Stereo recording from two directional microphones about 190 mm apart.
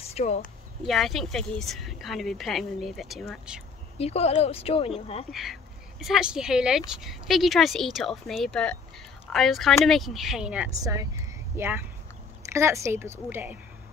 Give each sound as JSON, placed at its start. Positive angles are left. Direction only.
{"t": 0.0, "sound": "a sound", "side_deg": 35}
{"t": 0.8, "sound": "speech", "side_deg": 0}
{"t": 4.0, "sound": "speech", "side_deg": 35}
{"t": 5.3, "sound": "speech", "side_deg": 0}
{"t": 10.8, "sound": "speech", "side_deg": -20}